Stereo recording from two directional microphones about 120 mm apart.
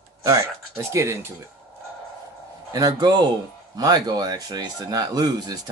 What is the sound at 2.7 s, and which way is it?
Speech, 35° right (ahead or behind).